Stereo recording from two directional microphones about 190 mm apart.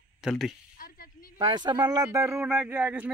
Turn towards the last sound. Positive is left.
turn(degrees=-10)  # may be behind; listen again after turning